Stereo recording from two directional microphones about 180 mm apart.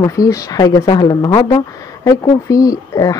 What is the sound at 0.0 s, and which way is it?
Speech, 20° left (ahead or behind).